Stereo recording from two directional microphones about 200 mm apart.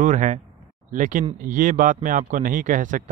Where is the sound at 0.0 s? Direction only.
35° right (ahead or behind).